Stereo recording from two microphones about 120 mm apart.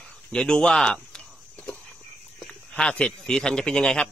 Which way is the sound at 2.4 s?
5° left (ahead or behind).